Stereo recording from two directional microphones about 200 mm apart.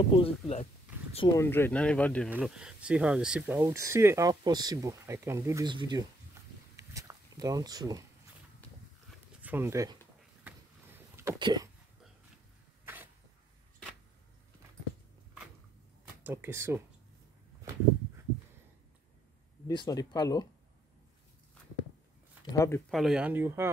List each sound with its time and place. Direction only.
0.2 s speech: 30° left (ahead or behind)
1.4 s speech: 10° left (ahead or behind)
2.3 s speech: 5° right (ahead or behind); by 6.0 s 20° right (ahead or behind)
6.8 s a sound: 15° right (ahead or behind)
9.4 s speech: 10° right (ahead or behind)
10.4 s a sound: 10° right (ahead or behind)
12.8 s a sound: 10° right (ahead or behind)
16.3 s speech: 10° right (ahead or behind)
19.7 s speech: 20° left (ahead or behind)
22.4 s speech: 15° left (ahead or behind)
22.8 s speech: centre (ahead or behind)